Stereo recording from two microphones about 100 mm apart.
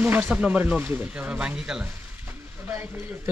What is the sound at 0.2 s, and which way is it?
Speech, 15° right (ahead or behind).